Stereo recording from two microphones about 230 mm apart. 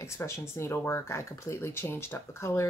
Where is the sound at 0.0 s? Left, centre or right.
Centre.